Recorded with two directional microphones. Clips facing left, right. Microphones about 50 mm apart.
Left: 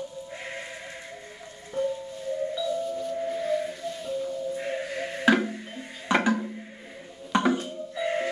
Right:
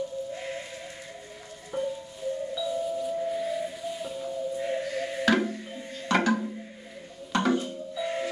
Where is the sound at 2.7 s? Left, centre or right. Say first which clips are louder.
Even; centre.